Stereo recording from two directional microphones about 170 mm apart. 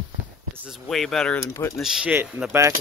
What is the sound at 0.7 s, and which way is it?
Speech, centre (ahead or behind).